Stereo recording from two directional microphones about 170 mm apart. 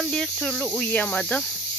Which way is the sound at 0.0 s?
Centre (ahead or behind).